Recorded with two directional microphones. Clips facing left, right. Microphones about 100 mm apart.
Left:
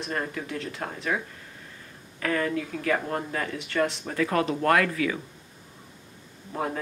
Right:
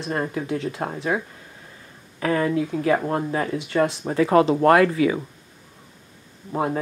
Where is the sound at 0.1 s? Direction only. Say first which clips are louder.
Right 7 dB; 25° right (ahead or behind).